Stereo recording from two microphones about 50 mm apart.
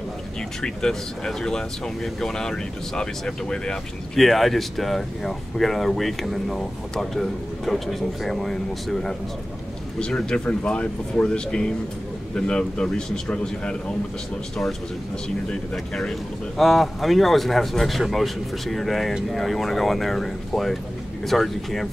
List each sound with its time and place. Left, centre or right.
0.6 s speech: centre
4.2 s speech: centre
9.9 s speech: centre
15.2 s speech: centre